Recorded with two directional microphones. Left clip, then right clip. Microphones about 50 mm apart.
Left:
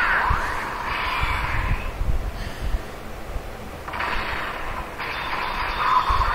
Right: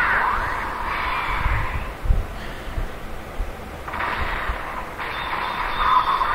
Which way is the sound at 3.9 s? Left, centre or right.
Centre.